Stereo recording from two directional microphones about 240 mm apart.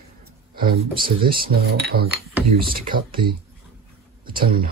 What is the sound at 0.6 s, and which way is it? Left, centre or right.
Speech, right.